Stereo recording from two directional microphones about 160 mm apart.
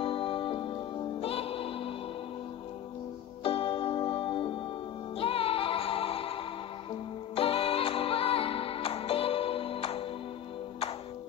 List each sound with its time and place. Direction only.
0.0 s music: 35° left (ahead or behind)
3.4 s music: 35° left (ahead or behind)